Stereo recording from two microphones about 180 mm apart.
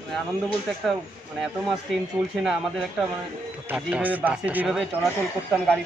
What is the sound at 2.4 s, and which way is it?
Speech, centre (ahead or behind).